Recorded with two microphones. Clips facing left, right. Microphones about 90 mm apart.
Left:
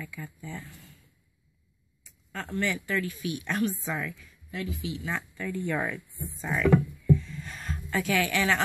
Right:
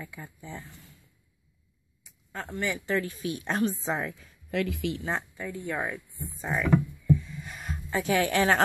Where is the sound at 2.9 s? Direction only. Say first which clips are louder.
Right 1 dB; 30° right (ahead or behind).